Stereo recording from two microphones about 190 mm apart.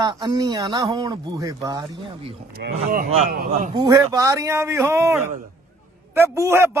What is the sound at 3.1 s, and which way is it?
Speech, 35° right (ahead or behind).